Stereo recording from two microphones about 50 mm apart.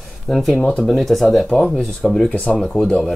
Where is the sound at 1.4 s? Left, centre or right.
Centre.